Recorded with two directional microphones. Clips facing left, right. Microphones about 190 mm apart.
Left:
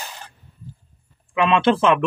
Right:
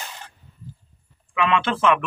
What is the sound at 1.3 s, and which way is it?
Speech, 30° left (ahead or behind).